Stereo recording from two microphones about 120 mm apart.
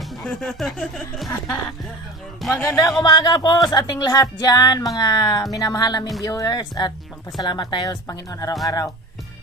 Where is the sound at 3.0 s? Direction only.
35° left (ahead or behind).